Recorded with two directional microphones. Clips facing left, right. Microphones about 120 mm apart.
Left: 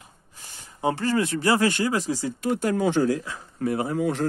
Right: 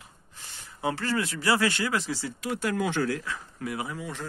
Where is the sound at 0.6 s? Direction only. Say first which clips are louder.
Left 5 dB; 35° left (ahead or behind).